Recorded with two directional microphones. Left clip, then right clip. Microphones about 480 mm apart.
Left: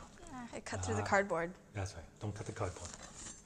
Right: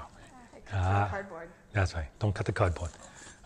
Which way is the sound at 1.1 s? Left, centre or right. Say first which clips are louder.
Left 6 dB; left.